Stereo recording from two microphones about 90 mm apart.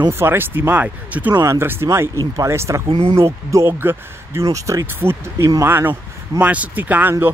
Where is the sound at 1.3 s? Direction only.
35° right (ahead or behind).